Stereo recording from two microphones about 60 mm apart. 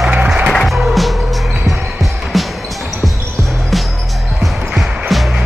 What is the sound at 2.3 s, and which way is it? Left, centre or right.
Music, centre.